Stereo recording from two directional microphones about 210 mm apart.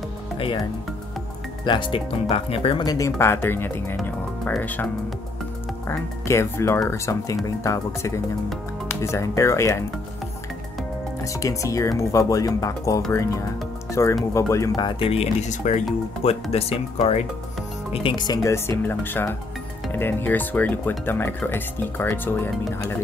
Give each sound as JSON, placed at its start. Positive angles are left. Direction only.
{"t": 1.6, "sound": "speech", "side_deg": 25}
{"t": 11.3, "sound": "speech", "side_deg": 15}